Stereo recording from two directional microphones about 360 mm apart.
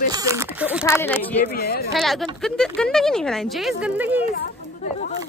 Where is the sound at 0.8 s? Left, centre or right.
Centre.